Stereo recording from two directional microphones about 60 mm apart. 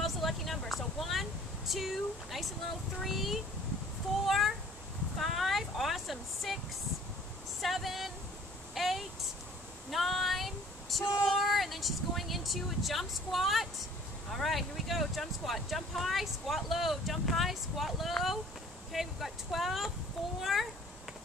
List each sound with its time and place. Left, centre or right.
0.0 s vehicle: centre
1.7 s speech: centre
4.3 s a sound: centre
7.6 s a sound: centre
9.8 s female singing: centre
11.2 s speech: centre